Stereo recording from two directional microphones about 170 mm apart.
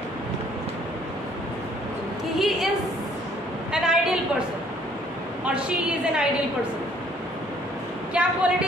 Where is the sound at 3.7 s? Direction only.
5° right (ahead or behind).